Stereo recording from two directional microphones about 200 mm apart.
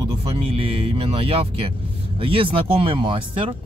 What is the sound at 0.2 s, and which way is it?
Speech, 30° right (ahead or behind).